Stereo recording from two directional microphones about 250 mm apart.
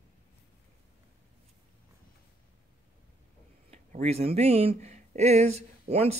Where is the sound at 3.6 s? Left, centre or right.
Right.